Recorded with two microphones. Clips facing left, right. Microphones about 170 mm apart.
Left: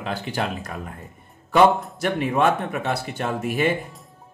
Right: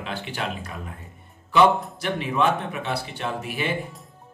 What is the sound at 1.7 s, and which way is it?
Speech, centre (ahead or behind).